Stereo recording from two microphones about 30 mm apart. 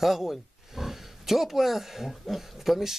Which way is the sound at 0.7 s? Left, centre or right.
Centre.